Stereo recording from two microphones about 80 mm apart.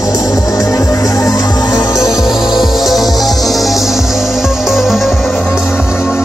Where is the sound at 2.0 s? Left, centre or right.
Centre.